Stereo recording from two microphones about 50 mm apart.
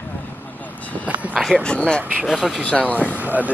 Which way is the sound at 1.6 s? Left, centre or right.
Centre.